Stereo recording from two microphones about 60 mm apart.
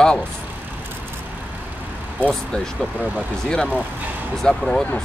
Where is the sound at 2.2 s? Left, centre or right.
Centre.